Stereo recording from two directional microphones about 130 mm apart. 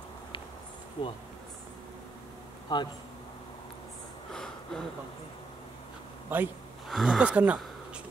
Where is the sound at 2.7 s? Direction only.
35° left (ahead or behind).